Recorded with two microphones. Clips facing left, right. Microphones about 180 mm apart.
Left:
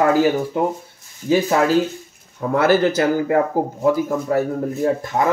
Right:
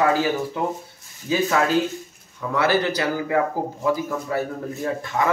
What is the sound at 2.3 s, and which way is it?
Speech, 45° left (ahead or behind).